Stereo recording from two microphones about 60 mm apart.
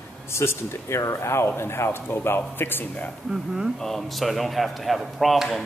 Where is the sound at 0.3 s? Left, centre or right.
Left.